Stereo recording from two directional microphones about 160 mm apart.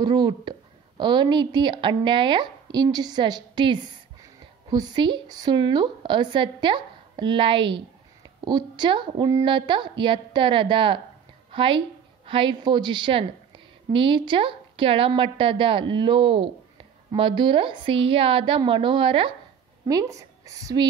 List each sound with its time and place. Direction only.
0.0 s a woman's voice: 25° right (ahead or behind)
19.9 s speech: 20° right (ahead or behind)